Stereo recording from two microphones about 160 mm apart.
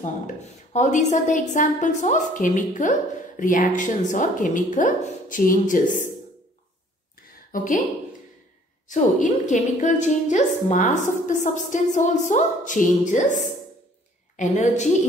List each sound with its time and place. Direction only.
0.7 s a woman's voice: 50° left (ahead or behind)
7.5 s speech: 55° left (ahead or behind)
8.8 s a woman's voice: 50° left (ahead or behind)